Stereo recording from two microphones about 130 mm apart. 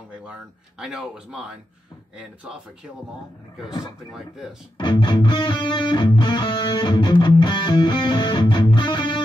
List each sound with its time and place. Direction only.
0.7 s speech: 5° right (ahead or behind)
4.7 s music: 40° left (ahead or behind)